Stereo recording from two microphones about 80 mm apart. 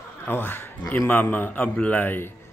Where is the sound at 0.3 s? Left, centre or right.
Left.